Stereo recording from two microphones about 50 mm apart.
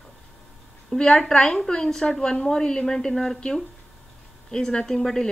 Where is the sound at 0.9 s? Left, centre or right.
Centre.